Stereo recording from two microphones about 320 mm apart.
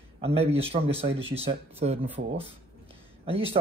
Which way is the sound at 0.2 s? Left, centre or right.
Centre.